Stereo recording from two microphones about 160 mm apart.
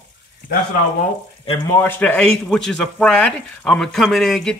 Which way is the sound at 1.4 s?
35° left (ahead or behind).